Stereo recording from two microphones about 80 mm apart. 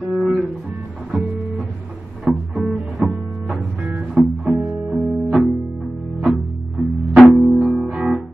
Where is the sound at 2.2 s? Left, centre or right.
Centre.